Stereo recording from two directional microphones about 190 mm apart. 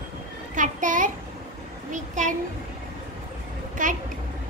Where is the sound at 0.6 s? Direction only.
45° right (ahead or behind).